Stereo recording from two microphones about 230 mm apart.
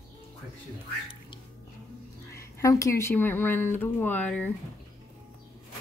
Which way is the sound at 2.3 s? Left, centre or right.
Centre.